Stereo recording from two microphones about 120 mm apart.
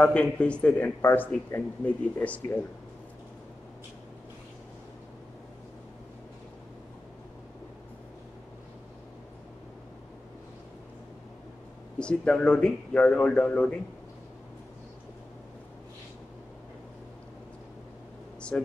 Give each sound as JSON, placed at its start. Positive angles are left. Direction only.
{"t": 0.0, "sound": "a man's voice", "side_deg": 10}
{"t": 12.0, "sound": "a man's voice", "side_deg": 10}
{"t": 18.5, "sound": "a man's voice", "side_deg": 10}